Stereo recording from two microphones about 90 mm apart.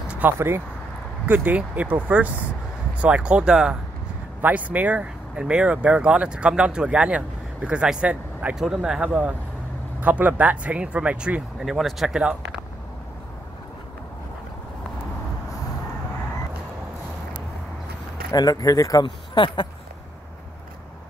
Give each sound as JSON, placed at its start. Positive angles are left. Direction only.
{"t": 0.2, "sound": "speech", "side_deg": -20}
{"t": 8.5, "sound": "speech", "side_deg": -5}
{"t": 18.3, "sound": "speech", "side_deg": 45}
{"t": 19.0, "sound": "speech", "side_deg": 60}